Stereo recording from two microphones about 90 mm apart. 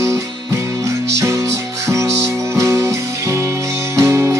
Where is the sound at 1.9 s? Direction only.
30° right (ahead or behind).